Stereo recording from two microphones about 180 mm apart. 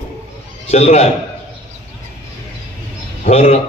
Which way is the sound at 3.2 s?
40° left (ahead or behind).